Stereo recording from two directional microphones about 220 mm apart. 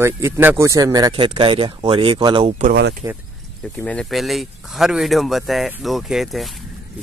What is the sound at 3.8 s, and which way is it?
Speech, 5° left (ahead or behind).